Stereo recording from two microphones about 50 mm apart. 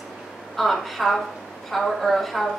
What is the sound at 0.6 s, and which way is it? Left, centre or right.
A woman's voice, centre.